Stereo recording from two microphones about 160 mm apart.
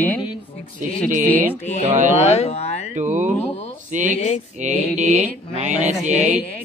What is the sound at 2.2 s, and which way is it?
Speech, 45° left (ahead or behind).